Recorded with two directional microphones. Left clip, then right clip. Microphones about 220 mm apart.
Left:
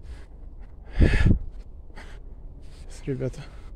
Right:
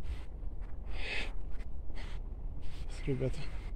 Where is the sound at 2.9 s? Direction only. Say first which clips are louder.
Left 6 dB; 40° left (ahead or behind).